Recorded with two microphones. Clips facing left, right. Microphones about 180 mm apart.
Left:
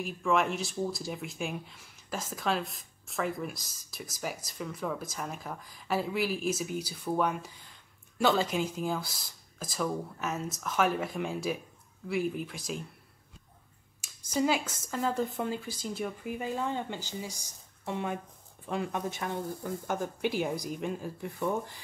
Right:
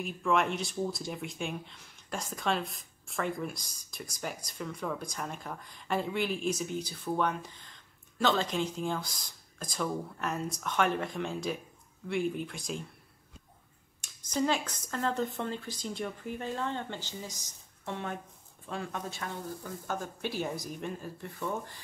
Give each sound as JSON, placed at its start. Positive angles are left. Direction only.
{"t": 0.0, "sound": "speech", "side_deg": 0}
{"t": 14.0, "sound": "speech", "side_deg": 10}